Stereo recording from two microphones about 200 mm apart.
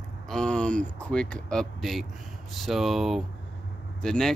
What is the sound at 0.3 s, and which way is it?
Speech, 5° left (ahead or behind).